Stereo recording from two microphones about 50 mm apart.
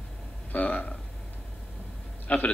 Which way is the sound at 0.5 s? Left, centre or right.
Left.